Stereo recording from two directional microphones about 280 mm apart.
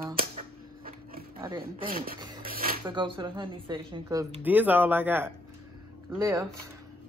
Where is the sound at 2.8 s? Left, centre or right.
Centre.